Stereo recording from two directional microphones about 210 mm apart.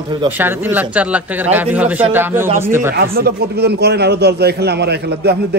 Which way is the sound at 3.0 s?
45° right (ahead or behind).